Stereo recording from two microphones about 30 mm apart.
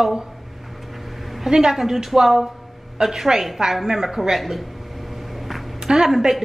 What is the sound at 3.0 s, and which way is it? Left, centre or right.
A woman's voice, centre.